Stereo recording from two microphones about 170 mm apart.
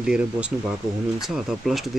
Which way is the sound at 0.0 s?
5° right (ahead or behind).